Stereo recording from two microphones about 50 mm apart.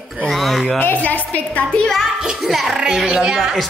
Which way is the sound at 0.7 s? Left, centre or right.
Left.